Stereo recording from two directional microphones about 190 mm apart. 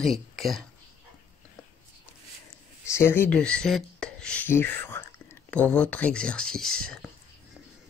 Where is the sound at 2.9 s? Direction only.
15° left (ahead or behind).